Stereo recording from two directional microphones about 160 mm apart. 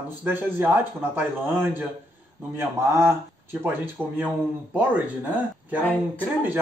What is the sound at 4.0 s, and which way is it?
Speech, 5° left (ahead or behind).